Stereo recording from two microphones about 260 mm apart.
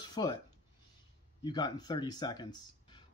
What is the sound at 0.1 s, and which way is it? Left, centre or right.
Speech, centre.